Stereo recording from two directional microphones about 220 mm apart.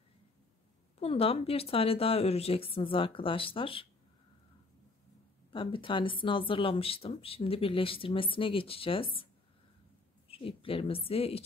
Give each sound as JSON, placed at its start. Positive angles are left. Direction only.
{"t": 0.9, "sound": "speech", "side_deg": 25}
{"t": 5.5, "sound": "speech", "side_deg": 25}